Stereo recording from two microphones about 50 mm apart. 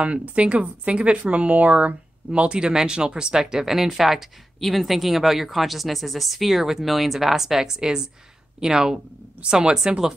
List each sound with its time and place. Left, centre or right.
0.0 s speech: right